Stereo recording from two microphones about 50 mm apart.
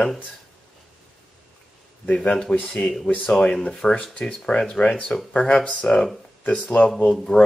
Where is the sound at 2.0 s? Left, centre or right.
Left.